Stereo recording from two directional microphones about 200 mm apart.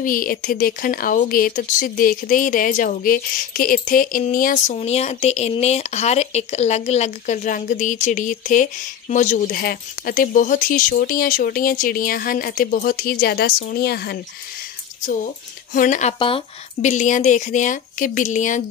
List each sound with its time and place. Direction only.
0.0 s speech: 45° left (ahead or behind)
15.7 s speech: 40° left (ahead or behind)